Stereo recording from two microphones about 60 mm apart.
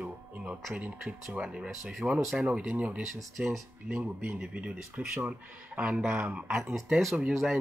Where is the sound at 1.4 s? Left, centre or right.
Centre.